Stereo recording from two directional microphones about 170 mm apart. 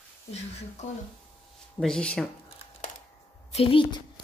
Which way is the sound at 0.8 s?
45° left (ahead or behind).